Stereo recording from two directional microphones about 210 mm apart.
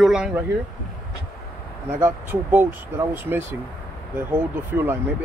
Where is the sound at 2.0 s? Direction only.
10° right (ahead or behind).